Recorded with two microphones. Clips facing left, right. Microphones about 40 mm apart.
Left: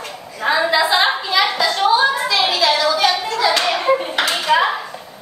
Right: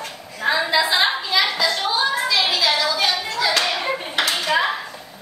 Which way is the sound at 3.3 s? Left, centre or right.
Centre.